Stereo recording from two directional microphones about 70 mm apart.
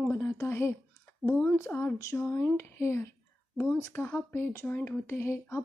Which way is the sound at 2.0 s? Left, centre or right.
Left.